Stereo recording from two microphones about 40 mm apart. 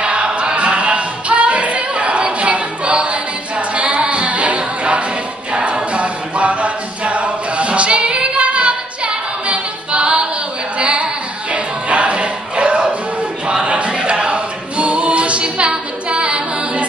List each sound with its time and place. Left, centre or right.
0.0 s a capella: right
5.5 s music: right
10.8 s a sound: right
13.5 s choir: right